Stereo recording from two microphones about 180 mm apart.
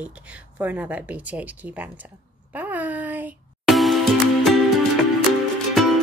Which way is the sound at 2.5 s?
10° right (ahead or behind).